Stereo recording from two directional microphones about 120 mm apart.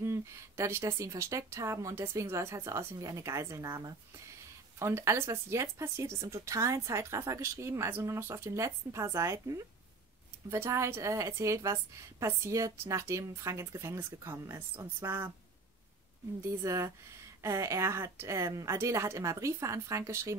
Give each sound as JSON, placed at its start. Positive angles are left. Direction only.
{"t": 0.0, "sound": "speech", "side_deg": -20}
{"t": 16.4, "sound": "speech", "side_deg": -25}